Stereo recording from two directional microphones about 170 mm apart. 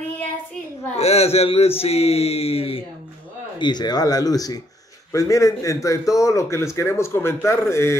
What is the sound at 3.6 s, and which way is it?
Speech, 25° left (ahead or behind).